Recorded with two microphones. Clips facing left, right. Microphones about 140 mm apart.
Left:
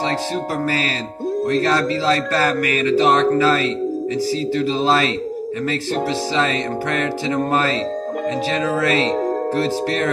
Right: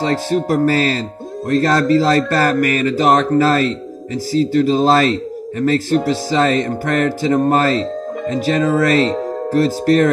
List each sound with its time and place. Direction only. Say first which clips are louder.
0.0 s speech: right 4 dB; 45° right (ahead or behind)